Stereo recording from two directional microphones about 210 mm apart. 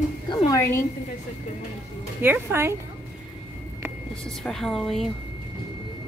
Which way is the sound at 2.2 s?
10° right (ahead or behind).